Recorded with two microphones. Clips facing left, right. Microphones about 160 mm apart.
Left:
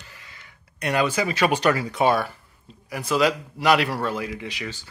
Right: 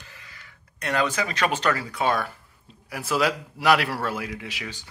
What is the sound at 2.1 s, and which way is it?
A man's voice, centre (ahead or behind).